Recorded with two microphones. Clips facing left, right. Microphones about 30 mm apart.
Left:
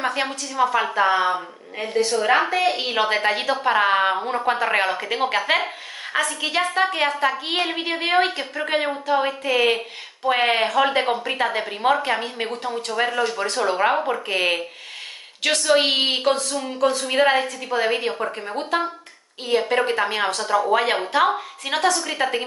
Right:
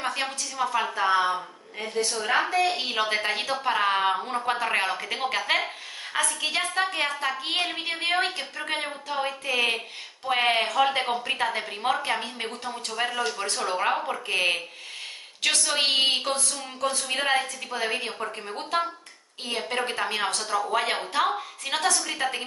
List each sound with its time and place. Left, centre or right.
0.0 s a woman's voice: centre